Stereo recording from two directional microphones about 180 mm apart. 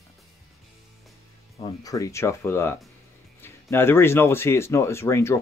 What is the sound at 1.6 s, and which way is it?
Speech, 20° left (ahead or behind).